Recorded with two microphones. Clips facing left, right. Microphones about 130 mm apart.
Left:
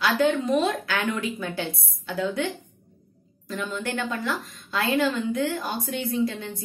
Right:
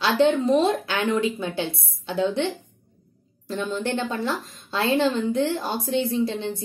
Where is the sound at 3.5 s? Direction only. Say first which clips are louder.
Right 4 dB; 30° right (ahead or behind).